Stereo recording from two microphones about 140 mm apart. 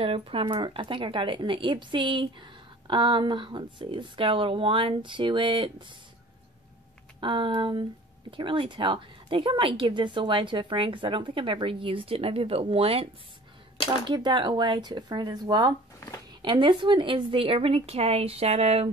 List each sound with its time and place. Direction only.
0.0 s speech: 40° right (ahead or behind)
7.2 s a woman's voice: 35° right (ahead or behind)